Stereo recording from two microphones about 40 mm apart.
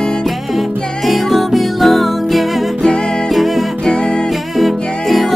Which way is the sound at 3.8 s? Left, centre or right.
Left.